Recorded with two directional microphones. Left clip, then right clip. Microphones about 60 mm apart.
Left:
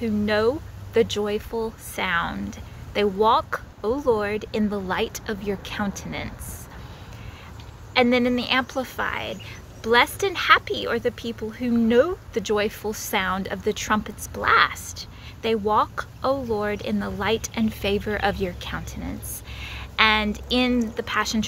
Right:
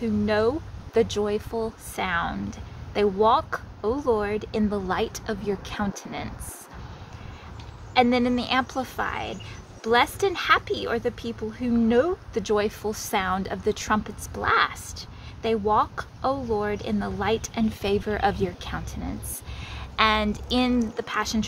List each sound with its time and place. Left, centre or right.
0.0 s a woman's voice: right
2.0 s a woman's voice: right
3.8 s speech: left
4.2 s a woman's voice: right
4.5 s speech: right
7.9 s speech: right
8.2 s a woman's voice: right
12.8 s speech: left
13.1 s a woman's voice: right
17.6 s a woman's voice: right
20.0 s speech: right
20.8 s a woman's voice: right
21.2 s speech: centre